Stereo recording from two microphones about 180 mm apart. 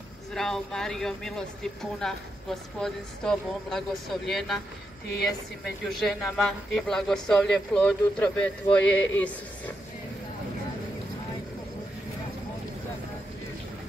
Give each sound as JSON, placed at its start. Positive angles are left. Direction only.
{"t": 0.3, "sound": "speech", "side_deg": 5}
{"t": 5.9, "sound": "speech", "side_deg": 0}